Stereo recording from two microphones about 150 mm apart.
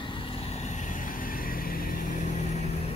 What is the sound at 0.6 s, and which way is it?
Vehicle, 55° left (ahead or behind).